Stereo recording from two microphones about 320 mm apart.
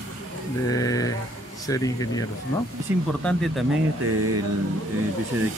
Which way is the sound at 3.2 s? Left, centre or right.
Centre.